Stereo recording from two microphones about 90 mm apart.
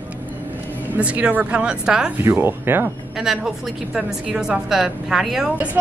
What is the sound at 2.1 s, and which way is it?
Speech, 25° right (ahead or behind).